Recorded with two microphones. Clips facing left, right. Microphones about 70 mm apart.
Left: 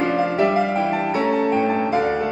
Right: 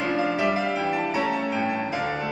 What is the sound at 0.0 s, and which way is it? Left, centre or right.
Music, left.